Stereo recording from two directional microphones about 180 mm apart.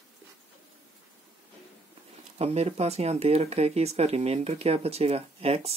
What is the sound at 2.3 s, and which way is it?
Speech, 35° right (ahead or behind).